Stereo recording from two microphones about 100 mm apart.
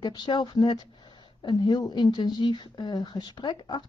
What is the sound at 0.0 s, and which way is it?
Speech, 50° left (ahead or behind).